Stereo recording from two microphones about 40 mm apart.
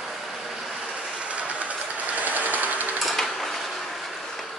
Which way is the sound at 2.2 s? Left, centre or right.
Right.